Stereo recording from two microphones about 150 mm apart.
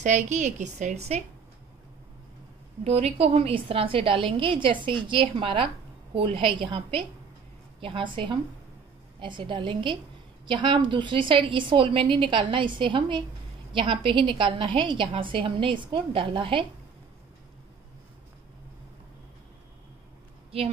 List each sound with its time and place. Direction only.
0.0 s a woman's voice: 55° right (ahead or behind)
2.8 s a woman's voice: 40° right (ahead or behind)
20.5 s a woman's voice: 40° right (ahead or behind)